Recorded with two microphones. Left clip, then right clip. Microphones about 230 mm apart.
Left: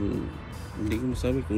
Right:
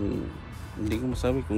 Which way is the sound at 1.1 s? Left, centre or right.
Right.